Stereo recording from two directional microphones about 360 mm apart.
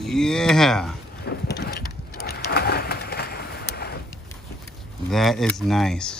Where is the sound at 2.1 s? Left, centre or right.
Left.